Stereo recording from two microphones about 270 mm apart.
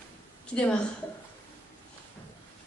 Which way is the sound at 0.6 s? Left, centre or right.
Centre.